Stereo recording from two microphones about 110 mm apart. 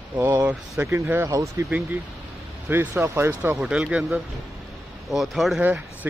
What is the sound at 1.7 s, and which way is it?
Speech, 15° right (ahead or behind).